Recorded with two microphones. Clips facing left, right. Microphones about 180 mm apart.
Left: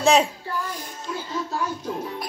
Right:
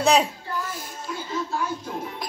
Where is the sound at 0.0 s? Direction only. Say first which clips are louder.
Left 1 dB; centre (ahead or behind).